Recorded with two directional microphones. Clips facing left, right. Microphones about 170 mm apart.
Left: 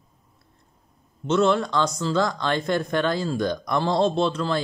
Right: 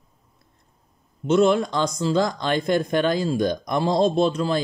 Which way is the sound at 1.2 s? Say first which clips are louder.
Right 2 dB; 15° right (ahead or behind).